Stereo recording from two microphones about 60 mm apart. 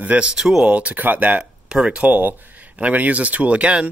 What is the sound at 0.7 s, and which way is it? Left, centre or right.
Speech, right.